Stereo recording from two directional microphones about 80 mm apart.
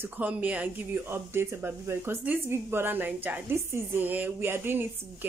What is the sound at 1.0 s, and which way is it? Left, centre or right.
Speech, right.